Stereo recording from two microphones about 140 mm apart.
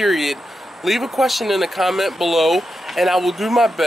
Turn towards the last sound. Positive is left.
turn(degrees=0)  # may be behind; listen again after turning